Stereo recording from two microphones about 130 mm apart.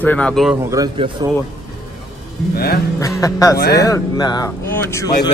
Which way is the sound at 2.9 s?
25° left (ahead or behind).